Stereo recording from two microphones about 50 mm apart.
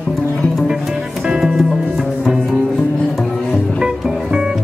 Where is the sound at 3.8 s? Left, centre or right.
Centre.